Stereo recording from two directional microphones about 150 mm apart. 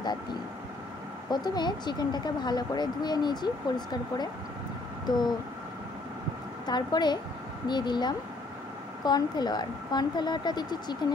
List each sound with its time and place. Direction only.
1.3 s speech: 25° left (ahead or behind)
5.0 s a sound: 30° left (ahead or behind)
6.6 s speech: 30° left (ahead or behind)